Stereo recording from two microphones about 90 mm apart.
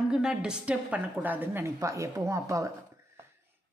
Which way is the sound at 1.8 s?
35° right (ahead or behind).